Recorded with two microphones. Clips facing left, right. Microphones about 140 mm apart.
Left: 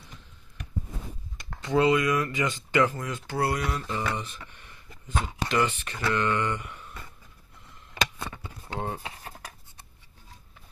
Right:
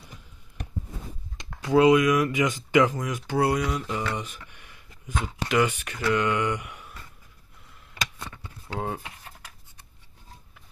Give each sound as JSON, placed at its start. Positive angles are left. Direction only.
{"t": 1.5, "sound": "speech", "side_deg": -10}
{"t": 8.0, "sound": "a sound", "side_deg": 60}
{"t": 8.7, "sound": "speech", "side_deg": 0}
{"t": 9.2, "sound": "writing", "side_deg": 40}